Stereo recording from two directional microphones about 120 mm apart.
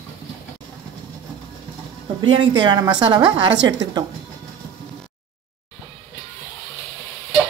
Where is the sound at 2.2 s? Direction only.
45° right (ahead or behind).